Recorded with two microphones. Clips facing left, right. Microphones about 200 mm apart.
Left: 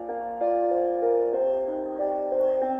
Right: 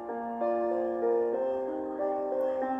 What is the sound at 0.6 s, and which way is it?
Music, 40° left (ahead or behind).